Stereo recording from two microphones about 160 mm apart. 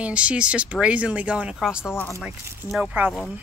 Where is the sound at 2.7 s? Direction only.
10° right (ahead or behind).